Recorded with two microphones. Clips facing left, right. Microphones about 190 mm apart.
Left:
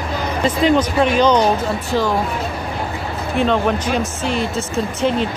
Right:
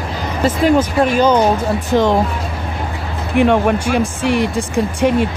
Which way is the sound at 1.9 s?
20° right (ahead or behind).